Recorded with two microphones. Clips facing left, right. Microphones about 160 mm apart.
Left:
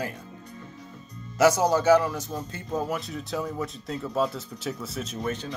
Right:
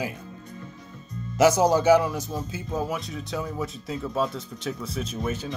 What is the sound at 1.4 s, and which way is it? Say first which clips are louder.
Speech: right 2 dB; 20° right (ahead or behind).